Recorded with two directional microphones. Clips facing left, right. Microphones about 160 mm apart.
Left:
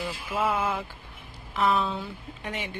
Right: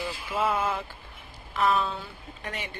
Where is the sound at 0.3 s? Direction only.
Centre (ahead or behind).